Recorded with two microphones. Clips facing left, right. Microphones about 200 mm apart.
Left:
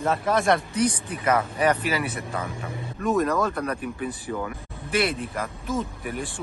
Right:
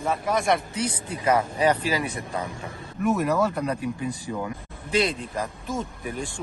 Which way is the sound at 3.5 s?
15° right (ahead or behind).